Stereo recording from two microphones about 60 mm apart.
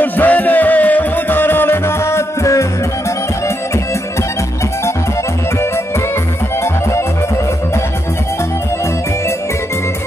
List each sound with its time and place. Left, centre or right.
0.0 s music: left